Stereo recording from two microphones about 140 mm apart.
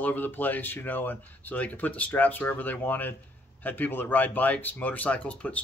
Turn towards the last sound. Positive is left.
turn(degrees=10)  # may be behind; listen again after turning